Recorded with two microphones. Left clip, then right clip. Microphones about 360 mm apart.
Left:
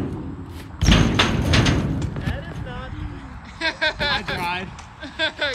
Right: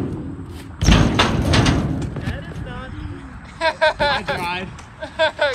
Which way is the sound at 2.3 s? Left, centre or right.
Left.